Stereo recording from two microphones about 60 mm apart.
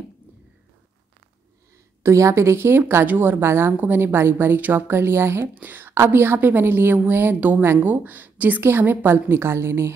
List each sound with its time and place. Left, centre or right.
2.0 s a woman's voice: right
5.5 s a woman's voice: right
7.6 s a woman's voice: right
7.9 s speech: right
8.6 s a woman's voice: right